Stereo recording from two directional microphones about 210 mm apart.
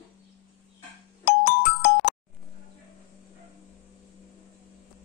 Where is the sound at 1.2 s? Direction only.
55° left (ahead or behind).